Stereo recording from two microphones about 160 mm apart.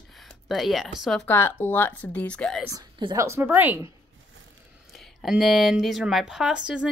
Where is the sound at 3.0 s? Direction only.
25° right (ahead or behind).